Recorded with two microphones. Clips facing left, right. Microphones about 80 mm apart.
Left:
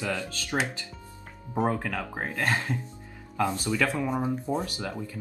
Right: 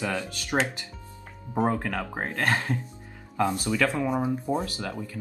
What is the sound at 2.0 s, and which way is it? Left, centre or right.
Speech, right.